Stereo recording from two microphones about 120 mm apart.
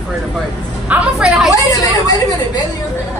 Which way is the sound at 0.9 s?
5° right (ahead or behind).